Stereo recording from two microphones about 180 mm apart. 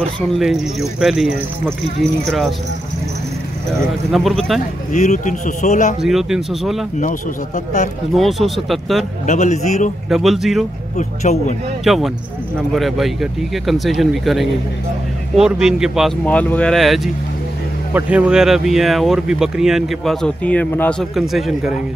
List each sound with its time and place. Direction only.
0.4 s speech: centre (ahead or behind)
4.1 s speech: centre (ahead or behind)
4.9 s speech: 40° left (ahead or behind)
6.0 s speech: centre (ahead or behind)
7.0 s speech: 45° left (ahead or behind)
8.1 s speech: centre (ahead or behind)
9.2 s speech: 40° left (ahead or behind)
10.0 s speech: centre (ahead or behind)
11.0 s speech: 40° left (ahead or behind)
11.8 s speech: centre (ahead or behind)
16.3 s speech: 10° left (ahead or behind)